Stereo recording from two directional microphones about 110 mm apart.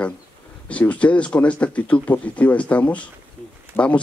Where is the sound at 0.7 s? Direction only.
10° left (ahead or behind).